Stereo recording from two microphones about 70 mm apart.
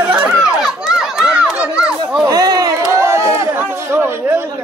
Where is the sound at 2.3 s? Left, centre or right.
Right.